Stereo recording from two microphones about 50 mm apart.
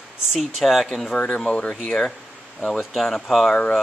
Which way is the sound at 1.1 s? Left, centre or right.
Left.